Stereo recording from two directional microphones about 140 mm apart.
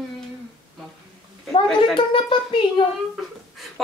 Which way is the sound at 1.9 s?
35° left (ahead or behind).